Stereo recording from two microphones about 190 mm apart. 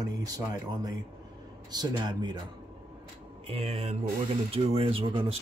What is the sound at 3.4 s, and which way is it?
Speech, 30° right (ahead or behind).